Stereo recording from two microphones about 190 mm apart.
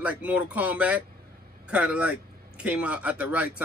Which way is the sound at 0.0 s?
10° right (ahead or behind).